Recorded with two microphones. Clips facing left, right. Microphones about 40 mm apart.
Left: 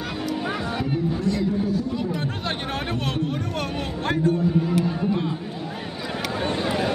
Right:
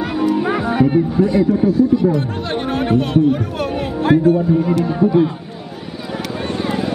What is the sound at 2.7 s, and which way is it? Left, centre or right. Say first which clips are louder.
A man's voice: right 11 dB; centre.